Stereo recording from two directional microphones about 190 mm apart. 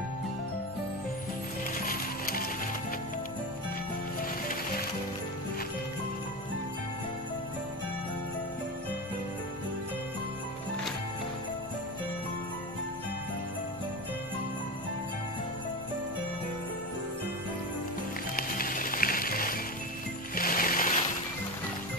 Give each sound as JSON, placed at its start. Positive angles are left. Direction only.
{"t": 1.8, "sound": "music", "side_deg": 50}
{"t": 4.2, "sound": "music", "side_deg": 50}
{"t": 18.3, "sound": "music", "side_deg": 50}